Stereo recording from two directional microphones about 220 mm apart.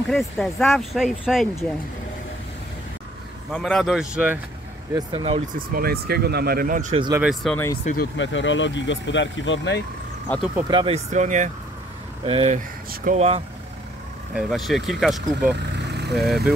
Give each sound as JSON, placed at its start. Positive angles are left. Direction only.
{"t": 0.1, "sound": "speech", "side_deg": 0}
{"t": 3.5, "sound": "speech", "side_deg": 0}
{"t": 4.9, "sound": "speech", "side_deg": -25}
{"t": 5.6, "sound": "speech", "side_deg": -45}
{"t": 7.2, "sound": "speech", "side_deg": 0}
{"t": 7.8, "sound": "speech", "side_deg": 40}
{"t": 8.2, "sound": "speech", "side_deg": 55}
{"t": 10.2, "sound": "speech", "side_deg": 5}
{"t": 10.7, "sound": "speech", "side_deg": -25}
{"t": 12.5, "sound": "speech", "side_deg": -35}
{"t": 14.3, "sound": "speech", "side_deg": 0}
{"t": 15.7, "sound": "vehicle", "side_deg": -50}
{"t": 16.2, "sound": "speech", "side_deg": 0}